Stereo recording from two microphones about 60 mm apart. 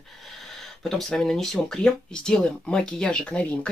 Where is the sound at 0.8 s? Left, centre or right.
Centre.